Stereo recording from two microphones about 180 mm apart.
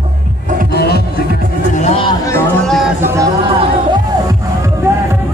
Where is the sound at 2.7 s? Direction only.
Centre (ahead or behind).